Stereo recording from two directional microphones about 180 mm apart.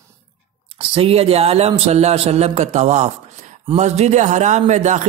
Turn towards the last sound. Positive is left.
turn(degrees=-40)  # may be behind; listen again after turning